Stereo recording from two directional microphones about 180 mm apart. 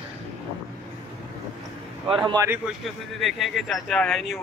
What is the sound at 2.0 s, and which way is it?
Speech, 25° right (ahead or behind).